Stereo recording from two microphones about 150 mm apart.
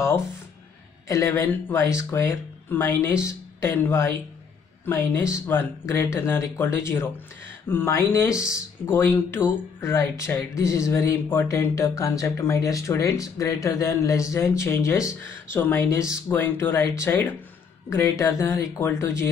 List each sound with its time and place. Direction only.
1.0 s speech: 20° left (ahead or behind)